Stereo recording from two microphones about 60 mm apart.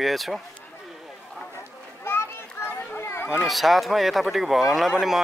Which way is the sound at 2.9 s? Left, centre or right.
Left.